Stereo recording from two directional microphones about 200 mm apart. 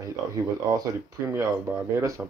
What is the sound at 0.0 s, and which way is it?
Speech, 15° right (ahead or behind).